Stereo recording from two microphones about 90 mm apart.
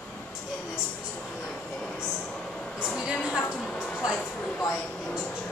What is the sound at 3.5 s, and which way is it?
A woman's voice, centre (ahead or behind).